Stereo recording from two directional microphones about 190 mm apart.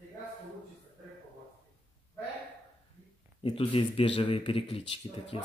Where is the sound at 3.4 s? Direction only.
30° left (ahead or behind).